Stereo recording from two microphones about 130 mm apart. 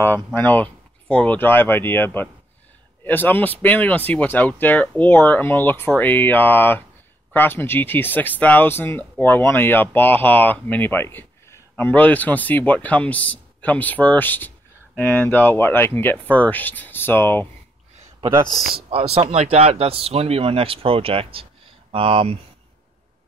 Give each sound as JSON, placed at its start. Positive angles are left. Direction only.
{"t": 0.0, "sound": "speech", "side_deg": 15}
{"t": 18.9, "sound": "speech", "side_deg": -45}